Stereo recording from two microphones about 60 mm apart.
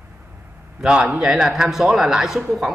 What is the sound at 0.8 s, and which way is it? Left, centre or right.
A man's voice, centre.